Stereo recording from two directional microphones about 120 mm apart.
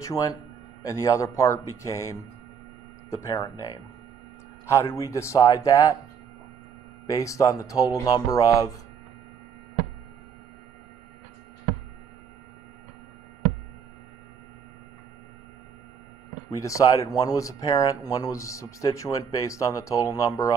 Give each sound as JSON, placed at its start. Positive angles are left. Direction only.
{"t": 0.0, "sound": "speech", "side_deg": 30}
{"t": 4.6, "sound": "speech", "side_deg": 20}
{"t": 7.1, "sound": "speech", "side_deg": 25}
{"t": 16.5, "sound": "speech", "side_deg": 30}